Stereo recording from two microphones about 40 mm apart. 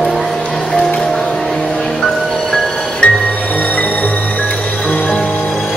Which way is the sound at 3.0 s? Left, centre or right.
Left.